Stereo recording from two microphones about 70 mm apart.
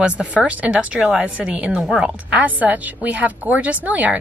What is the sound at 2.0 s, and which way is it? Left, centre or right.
A woman's voice, centre.